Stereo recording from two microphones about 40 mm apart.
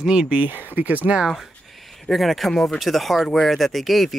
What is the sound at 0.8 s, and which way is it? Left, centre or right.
Speech, right.